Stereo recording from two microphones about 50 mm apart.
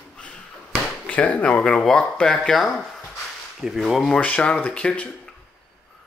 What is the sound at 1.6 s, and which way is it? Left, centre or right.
Speech, centre.